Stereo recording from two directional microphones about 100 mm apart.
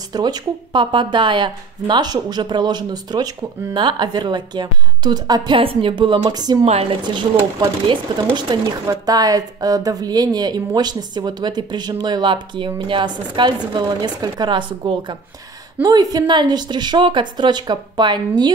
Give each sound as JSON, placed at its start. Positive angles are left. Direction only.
{"t": 0.1, "sound": "speech", "side_deg": -45}
{"t": 5.6, "sound": "speech", "side_deg": -65}
{"t": 6.3, "sound": "a woman's voice", "side_deg": -40}
{"t": 6.6, "sound": "a woman's voice", "side_deg": -90}
{"t": 7.0, "sound": "speech", "side_deg": -50}
{"t": 15.8, "sound": "speech", "side_deg": -40}